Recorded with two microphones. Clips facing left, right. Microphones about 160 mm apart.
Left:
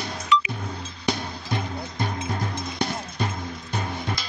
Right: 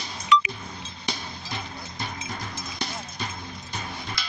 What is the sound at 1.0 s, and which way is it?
Music, 55° left (ahead or behind).